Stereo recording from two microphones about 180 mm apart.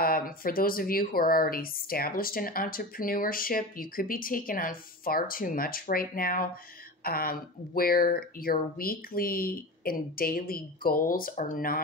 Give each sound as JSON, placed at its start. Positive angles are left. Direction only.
{"t": 0.0, "sound": "speech", "side_deg": 55}